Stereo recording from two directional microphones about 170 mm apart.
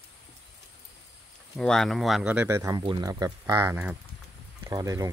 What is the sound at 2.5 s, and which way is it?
Speech, 20° right (ahead or behind).